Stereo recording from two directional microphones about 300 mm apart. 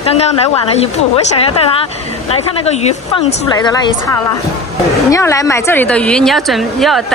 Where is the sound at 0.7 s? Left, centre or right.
Left.